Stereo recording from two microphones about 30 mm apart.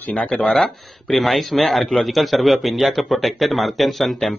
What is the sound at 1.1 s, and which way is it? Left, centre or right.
A man's voice, centre.